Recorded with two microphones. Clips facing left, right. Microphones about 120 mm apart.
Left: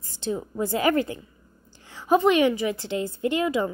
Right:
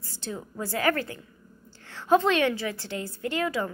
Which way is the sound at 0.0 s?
20° left (ahead or behind).